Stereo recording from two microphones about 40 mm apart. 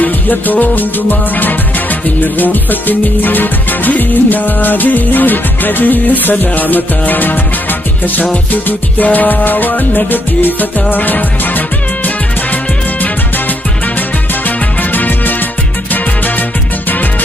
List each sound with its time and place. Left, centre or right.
0.0 s music: left
8.6 s music: left
14.8 s music: left